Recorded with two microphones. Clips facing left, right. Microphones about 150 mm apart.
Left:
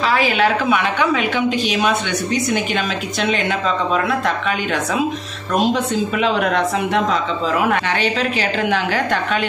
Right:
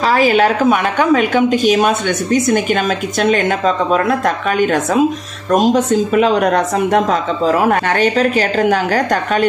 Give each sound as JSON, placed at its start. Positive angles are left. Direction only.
{"t": 0.0, "sound": "a woman's voice", "side_deg": -40}